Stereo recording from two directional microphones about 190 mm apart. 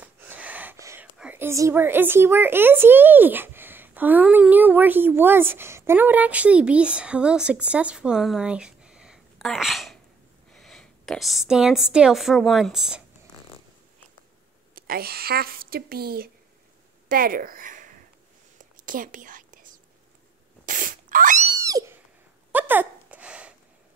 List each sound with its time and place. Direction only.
0.0 s gasp: 10° right (ahead or behind)
1.1 s a woman's voice: 5° right (ahead or behind)
14.8 s a woman's voice: 50° right (ahead or behind)
18.9 s whispering: 45° right (ahead or behind)
20.6 s sneeze: 45° right (ahead or behind)
21.5 s cat: 15° right (ahead or behind)
22.5 s a sound: 10° right (ahead or behind)